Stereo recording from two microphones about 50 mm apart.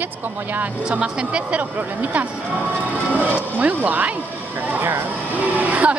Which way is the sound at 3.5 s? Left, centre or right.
Right.